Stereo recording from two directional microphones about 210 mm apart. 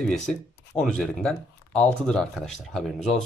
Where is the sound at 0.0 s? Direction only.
5° left (ahead or behind).